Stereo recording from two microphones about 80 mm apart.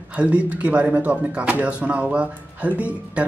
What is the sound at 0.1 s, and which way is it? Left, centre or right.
Speech, centre.